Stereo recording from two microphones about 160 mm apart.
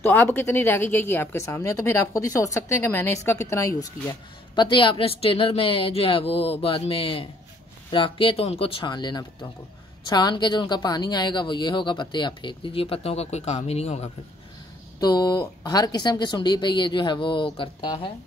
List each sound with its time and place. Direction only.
0.0 s a woman's voice: 15° left (ahead or behind); by 14.1 s 40° left (ahead or behind)
15.0 s a woman's voice: 25° left (ahead or behind)